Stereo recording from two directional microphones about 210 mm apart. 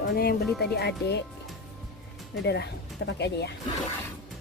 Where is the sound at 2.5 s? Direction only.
55° left (ahead or behind).